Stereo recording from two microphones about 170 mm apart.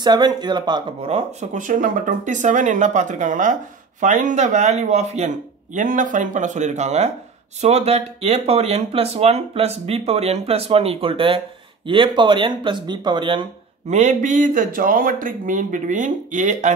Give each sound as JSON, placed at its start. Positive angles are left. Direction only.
{"t": 0.0, "sound": "speech", "side_deg": -25}
{"t": 1.0, "sound": "speech", "side_deg": -40}
{"t": 13.8, "sound": "speech", "side_deg": -45}